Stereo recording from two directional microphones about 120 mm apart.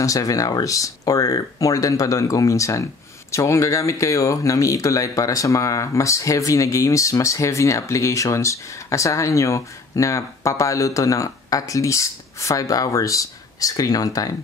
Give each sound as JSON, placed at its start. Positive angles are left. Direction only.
{"t": 0.0, "sound": "speech", "side_deg": 30}